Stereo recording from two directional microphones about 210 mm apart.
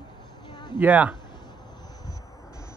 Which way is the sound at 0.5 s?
20° left (ahead or behind).